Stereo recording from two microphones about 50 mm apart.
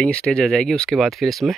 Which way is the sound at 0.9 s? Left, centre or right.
Centre.